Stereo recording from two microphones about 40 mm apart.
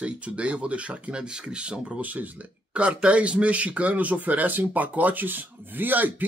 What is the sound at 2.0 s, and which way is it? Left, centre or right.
Speech, right.